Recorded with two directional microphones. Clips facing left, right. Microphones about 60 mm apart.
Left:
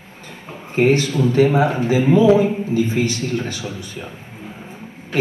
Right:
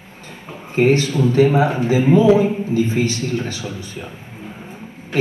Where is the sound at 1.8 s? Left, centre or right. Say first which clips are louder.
Right 1 dB; right.